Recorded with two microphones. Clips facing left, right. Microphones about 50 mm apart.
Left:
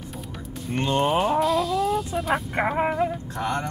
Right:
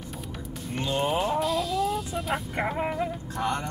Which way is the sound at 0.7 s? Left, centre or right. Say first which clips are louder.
Left 5 dB; left.